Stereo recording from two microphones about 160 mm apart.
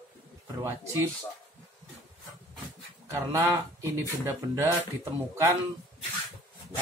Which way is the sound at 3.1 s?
20° right (ahead or behind).